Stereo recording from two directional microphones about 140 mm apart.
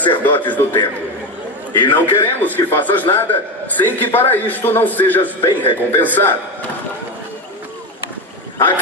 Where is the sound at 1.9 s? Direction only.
15° left (ahead or behind).